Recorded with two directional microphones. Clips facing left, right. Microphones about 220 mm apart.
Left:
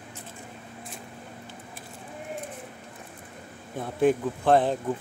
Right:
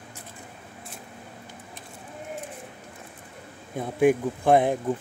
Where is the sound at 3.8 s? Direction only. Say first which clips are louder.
Right 2 dB; 10° right (ahead or behind).